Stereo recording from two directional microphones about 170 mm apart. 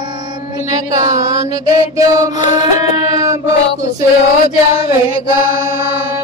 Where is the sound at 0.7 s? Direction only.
20° right (ahead or behind).